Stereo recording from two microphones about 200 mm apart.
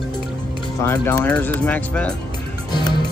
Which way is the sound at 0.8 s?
10° left (ahead or behind).